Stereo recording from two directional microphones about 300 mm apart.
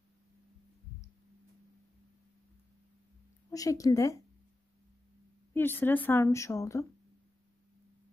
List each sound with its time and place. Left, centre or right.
3.5 s a woman's voice: centre
5.5 s a woman's voice: centre